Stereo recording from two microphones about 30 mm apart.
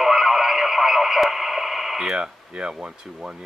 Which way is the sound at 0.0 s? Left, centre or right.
Centre.